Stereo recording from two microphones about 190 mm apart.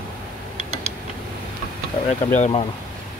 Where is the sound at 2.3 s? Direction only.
40° left (ahead or behind).